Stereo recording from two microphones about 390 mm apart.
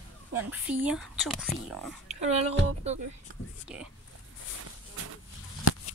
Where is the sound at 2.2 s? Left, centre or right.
Centre.